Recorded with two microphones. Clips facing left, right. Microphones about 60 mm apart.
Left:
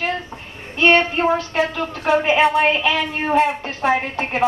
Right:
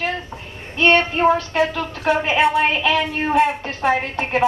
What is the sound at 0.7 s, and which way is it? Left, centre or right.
A woman's voice, centre.